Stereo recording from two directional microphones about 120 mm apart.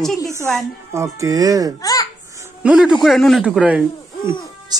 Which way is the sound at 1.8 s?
30° left (ahead or behind).